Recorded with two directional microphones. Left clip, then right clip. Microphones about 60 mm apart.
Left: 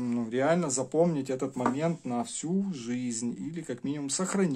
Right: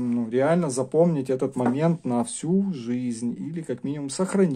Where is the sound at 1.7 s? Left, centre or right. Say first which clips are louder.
Right 6 dB; right.